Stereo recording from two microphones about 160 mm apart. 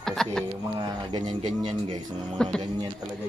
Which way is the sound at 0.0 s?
5° left (ahead or behind).